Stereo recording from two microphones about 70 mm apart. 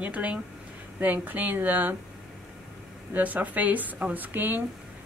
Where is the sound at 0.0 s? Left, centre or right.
Centre.